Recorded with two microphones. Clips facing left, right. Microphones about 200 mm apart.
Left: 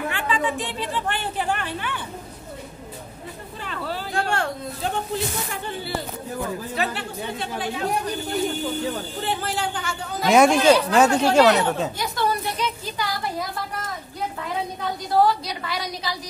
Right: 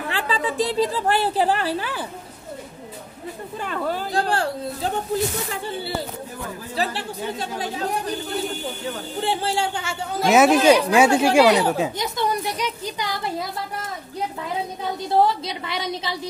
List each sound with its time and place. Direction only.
0.1 s a woman's voice: 35° right (ahead or behind)
3.5 s speech: 50° right (ahead or behind); by 4.9 s 30° right (ahead or behind)
6.7 s speech: 30° right (ahead or behind)
9.2 s a woman's voice: 30° right (ahead or behind)
10.2 s speech: 5° right (ahead or behind)
12.0 s a sound: 20° right (ahead or behind)
15.0 s a woman's voice: 25° right (ahead or behind)